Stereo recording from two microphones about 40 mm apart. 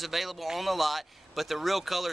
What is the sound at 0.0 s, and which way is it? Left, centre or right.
Speech, centre.